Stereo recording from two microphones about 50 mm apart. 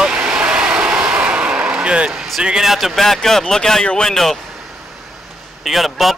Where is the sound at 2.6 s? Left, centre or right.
Centre.